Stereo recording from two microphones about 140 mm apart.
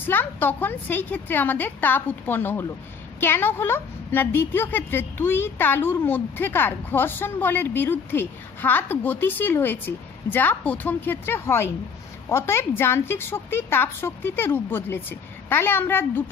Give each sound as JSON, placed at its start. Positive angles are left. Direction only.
{"t": 0.0, "sound": "a woman's voice", "side_deg": 15}